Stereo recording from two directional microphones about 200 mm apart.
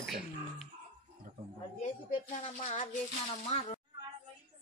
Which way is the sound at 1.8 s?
35° left (ahead or behind).